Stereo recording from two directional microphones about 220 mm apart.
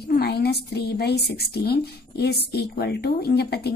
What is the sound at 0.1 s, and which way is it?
A woman's voice, 45° left (ahead or behind).